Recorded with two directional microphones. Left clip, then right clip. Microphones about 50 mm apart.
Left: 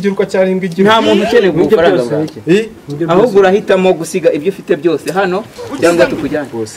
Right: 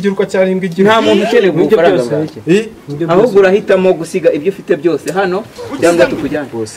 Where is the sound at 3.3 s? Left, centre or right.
Left.